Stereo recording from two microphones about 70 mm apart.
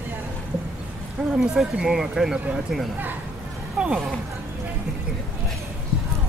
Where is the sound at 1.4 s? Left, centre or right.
Centre.